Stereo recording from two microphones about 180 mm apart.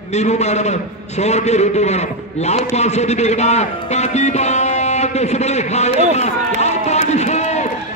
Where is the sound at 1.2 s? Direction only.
40° left (ahead or behind).